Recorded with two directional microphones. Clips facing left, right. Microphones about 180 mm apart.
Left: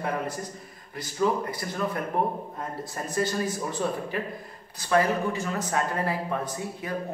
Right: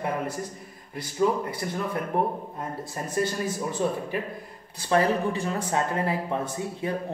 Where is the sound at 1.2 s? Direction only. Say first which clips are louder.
Left 1 dB; 15° right (ahead or behind).